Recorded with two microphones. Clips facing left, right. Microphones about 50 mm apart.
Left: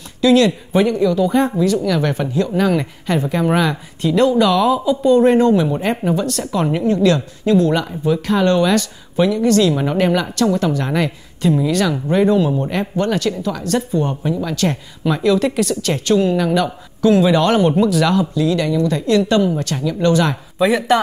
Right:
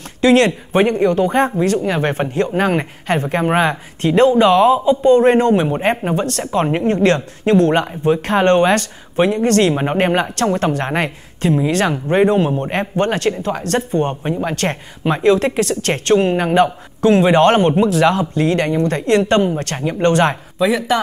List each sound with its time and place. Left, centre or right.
0.2 s a woman's voice: right
20.5 s speech: centre